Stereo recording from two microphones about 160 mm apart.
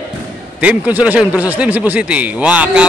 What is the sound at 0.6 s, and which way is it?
Speech, 10° right (ahead or behind).